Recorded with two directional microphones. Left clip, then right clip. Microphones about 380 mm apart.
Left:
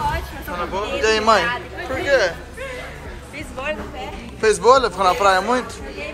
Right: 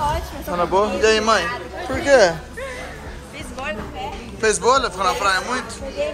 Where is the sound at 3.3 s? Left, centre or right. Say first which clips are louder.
Left 2 dB; centre.